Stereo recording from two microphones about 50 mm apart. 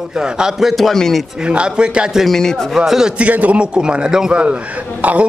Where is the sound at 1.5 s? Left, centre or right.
Centre.